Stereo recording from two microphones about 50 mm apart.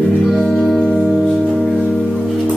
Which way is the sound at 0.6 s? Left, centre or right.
Centre.